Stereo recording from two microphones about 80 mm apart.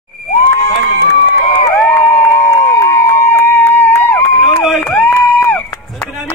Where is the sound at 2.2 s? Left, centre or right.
Left.